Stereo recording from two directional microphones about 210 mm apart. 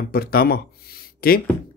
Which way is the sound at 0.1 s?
45° left (ahead or behind).